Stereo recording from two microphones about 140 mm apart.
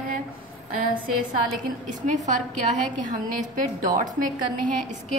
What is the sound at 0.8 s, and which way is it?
Speech, 75° right (ahead or behind).